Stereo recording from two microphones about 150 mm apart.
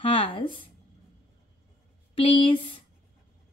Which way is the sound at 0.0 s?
40° left (ahead or behind).